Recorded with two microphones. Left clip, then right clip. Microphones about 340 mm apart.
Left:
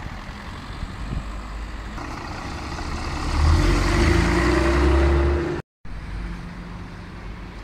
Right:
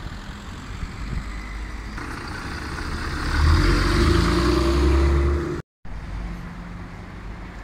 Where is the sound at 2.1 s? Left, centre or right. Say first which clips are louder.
Right 1 dB; centre.